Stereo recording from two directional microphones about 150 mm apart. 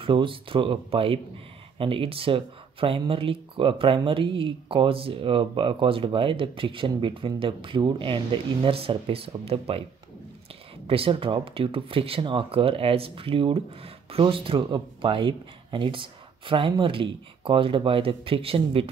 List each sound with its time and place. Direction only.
0.0 s speech: 35° right (ahead or behind)
10.9 s speech: 35° right (ahead or behind)